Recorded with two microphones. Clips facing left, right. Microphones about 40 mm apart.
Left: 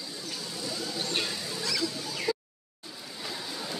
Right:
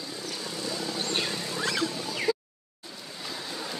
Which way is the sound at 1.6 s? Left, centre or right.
Right.